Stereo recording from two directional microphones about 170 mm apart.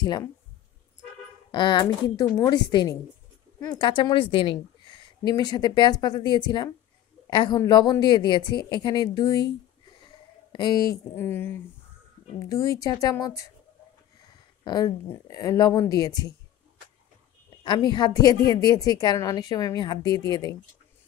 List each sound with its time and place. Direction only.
0.0 s a woman's voice: 25° left (ahead or behind)
1.5 s a woman's voice: 25° left (ahead or behind)
10.0 s a sound: 25° left (ahead or behind)
11.1 s a woman's voice: 10° left (ahead or behind)
14.6 s a woman's voice: 25° left (ahead or behind)
17.9 s a woman's voice: 25° left (ahead or behind)